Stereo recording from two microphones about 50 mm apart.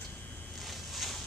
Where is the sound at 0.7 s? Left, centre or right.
Centre.